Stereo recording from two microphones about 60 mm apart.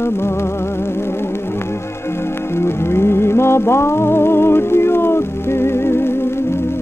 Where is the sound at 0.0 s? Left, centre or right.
Left.